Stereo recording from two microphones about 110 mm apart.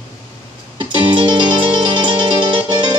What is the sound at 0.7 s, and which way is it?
Music, 45° right (ahead or behind).